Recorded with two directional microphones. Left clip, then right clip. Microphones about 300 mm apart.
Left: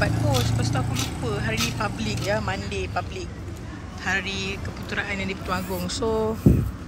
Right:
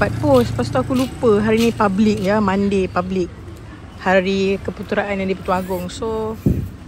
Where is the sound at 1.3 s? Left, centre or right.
Centre.